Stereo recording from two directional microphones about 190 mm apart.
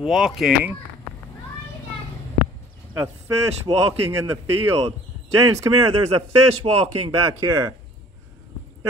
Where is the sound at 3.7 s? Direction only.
30° right (ahead or behind).